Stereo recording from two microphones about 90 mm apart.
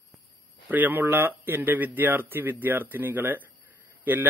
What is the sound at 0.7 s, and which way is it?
A man's voice, 20° right (ahead or behind).